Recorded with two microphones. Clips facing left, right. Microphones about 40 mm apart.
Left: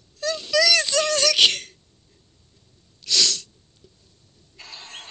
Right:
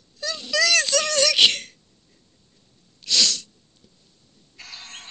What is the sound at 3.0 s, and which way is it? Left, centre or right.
Sneeze, right.